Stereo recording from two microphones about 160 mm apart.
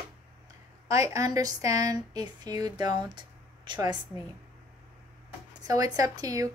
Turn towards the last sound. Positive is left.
turn(degrees=-20)  # may be behind; listen again after turning